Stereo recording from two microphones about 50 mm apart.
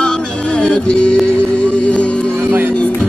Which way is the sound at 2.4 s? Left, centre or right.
Right.